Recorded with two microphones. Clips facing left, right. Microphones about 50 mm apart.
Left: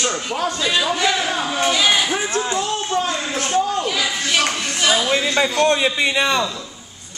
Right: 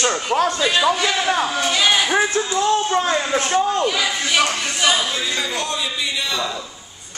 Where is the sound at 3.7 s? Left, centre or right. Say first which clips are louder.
Right 2 dB; centre.